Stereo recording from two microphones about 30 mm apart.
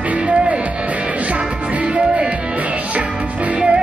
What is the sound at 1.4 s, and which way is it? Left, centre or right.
Music, right.